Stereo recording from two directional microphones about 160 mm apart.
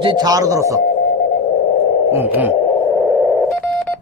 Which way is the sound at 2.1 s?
15° right (ahead or behind).